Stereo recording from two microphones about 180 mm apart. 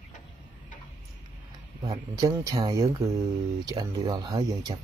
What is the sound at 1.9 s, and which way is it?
Speech, 20° right (ahead or behind).